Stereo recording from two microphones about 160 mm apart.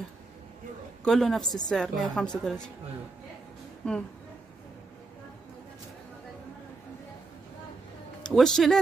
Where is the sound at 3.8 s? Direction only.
5° left (ahead or behind).